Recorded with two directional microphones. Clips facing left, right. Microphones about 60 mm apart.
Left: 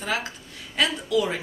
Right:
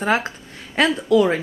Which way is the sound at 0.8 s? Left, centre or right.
Right.